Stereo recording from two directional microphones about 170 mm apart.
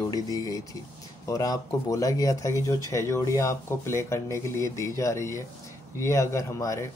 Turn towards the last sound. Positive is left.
turn(degrees=20)  # may be behind; listen again after turning